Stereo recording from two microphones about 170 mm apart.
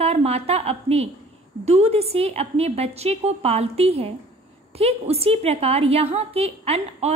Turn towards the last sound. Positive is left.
turn(degrees=-35)  # may be behind; listen again after turning